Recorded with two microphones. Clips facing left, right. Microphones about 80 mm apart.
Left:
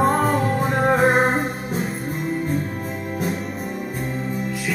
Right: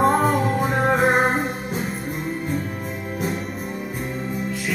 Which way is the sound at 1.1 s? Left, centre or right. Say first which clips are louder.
Left 1 dB; right.